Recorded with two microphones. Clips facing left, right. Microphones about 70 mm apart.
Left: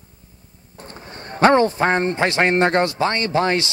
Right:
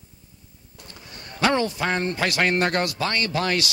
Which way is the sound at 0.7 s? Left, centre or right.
Left.